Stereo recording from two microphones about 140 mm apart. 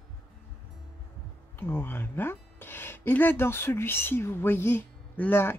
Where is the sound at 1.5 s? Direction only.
15° left (ahead or behind).